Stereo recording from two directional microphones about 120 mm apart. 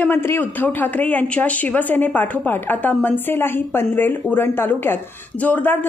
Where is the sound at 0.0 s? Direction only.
20° left (ahead or behind).